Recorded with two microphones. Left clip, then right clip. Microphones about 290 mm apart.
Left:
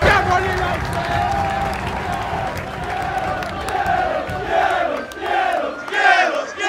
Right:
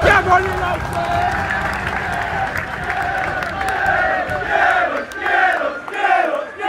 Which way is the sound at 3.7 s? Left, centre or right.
Centre.